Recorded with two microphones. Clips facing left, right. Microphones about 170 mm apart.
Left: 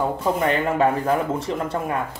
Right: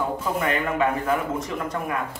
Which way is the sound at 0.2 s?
30° left (ahead or behind).